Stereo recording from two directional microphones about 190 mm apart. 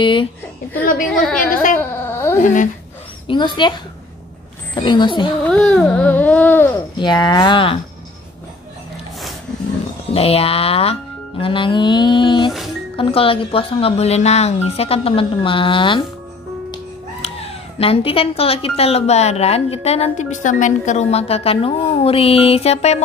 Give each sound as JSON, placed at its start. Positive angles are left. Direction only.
{"t": 0.0, "sound": "speech", "side_deg": 25}
{"t": 1.0, "sound": "a woman's voice", "side_deg": 5}
{"t": 1.8, "sound": "a sound", "side_deg": 15}
{"t": 2.4, "sound": "a child's voice", "side_deg": 40}
{"t": 3.3, "sound": "speech", "side_deg": 25}
{"t": 5.5, "sound": "a sound", "side_deg": 5}
{"t": 7.0, "sound": "speech", "side_deg": 20}
{"t": 10.1, "sound": "a child's voice", "side_deg": 30}